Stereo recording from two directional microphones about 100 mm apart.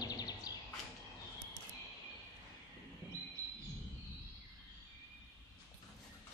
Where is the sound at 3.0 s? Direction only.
20° right (ahead or behind).